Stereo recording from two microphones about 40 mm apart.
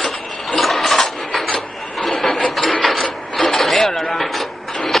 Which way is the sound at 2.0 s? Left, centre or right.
Centre.